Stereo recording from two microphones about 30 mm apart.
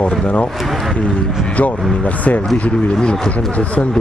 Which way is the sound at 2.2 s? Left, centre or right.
Left.